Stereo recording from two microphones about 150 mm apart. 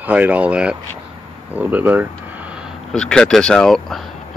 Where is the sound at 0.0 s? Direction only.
10° right (ahead or behind).